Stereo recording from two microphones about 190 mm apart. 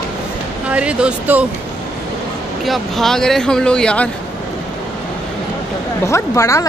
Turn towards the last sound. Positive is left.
turn(degrees=15)  # may be behind; listen again after turning